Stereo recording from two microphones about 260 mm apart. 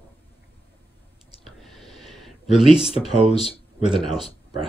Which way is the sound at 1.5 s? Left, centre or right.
Centre.